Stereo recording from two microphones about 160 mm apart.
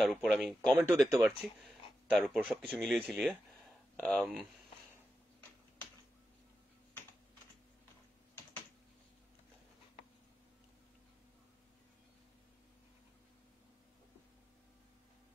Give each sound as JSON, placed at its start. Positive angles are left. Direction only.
{"t": 0.0, "sound": "speech", "side_deg": 0}
{"t": 0.7, "sound": "speech", "side_deg": -15}
{"t": 1.4, "sound": "speech", "side_deg": -5}